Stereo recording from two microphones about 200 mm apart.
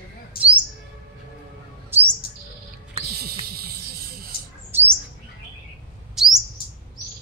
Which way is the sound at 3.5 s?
50° right (ahead or behind).